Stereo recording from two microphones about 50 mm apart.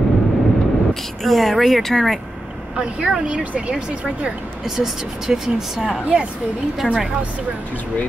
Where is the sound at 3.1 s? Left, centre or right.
Right.